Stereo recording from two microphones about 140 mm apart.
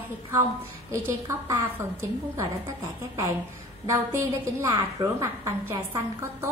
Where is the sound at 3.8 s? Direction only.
20° right (ahead or behind).